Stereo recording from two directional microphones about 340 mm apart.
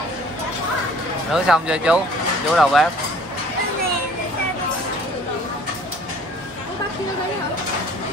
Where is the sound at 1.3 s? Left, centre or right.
Centre.